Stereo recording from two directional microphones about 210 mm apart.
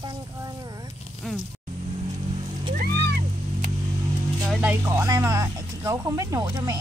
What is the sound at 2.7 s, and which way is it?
Music, 50° right (ahead or behind).